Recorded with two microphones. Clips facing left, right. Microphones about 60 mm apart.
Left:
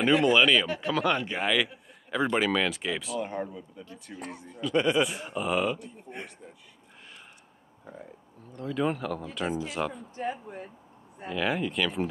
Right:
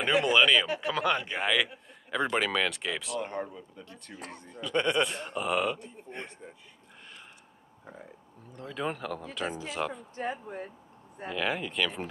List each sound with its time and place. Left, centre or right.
0.0 s speech: centre
6.1 s speech: centre
8.5 s speech: centre
10.1 s speech: right
11.2 s speech: centre